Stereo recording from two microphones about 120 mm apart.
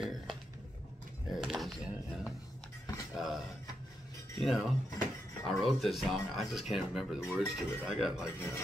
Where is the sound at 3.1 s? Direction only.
Centre (ahead or behind).